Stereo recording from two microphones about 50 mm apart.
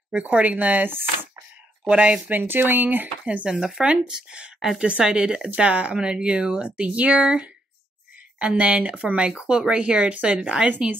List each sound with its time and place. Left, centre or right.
0.1 s speech: right
2.2 s speech: right
3.4 s speech: centre